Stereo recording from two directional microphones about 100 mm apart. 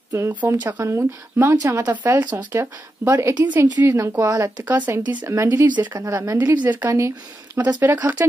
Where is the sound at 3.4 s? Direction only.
15° right (ahead or behind); by 6.5 s 35° right (ahead or behind).